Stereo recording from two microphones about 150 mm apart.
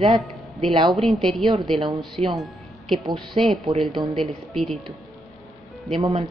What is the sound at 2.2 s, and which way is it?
Speech, 45° right (ahead or behind).